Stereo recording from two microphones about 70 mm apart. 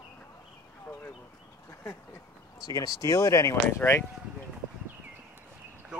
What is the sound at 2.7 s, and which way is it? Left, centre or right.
Speech, left.